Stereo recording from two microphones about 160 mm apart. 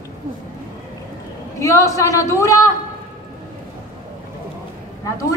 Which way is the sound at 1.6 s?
20° left (ahead or behind).